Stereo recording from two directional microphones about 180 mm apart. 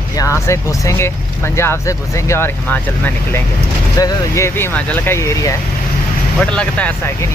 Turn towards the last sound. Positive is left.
turn(degrees=10)  # may be behind; listen again after turning